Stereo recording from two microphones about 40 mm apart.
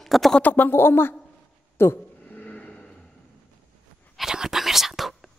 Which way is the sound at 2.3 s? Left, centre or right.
Left.